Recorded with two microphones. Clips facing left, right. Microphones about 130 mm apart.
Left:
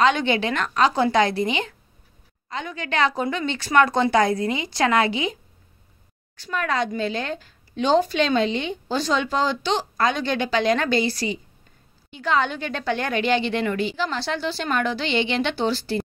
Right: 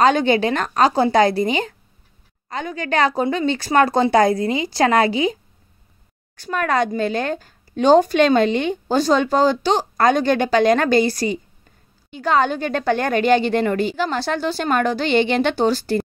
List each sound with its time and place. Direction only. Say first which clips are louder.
0.0 s a woman's voice: right 4 dB; 40° right (ahead or behind)